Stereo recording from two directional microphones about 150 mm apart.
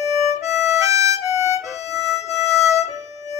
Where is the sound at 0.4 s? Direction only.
Centre (ahead or behind).